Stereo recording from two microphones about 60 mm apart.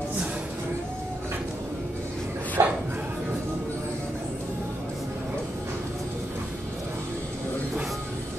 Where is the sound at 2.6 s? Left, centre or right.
Right.